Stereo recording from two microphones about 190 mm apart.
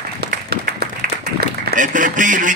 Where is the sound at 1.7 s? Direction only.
45° right (ahead or behind).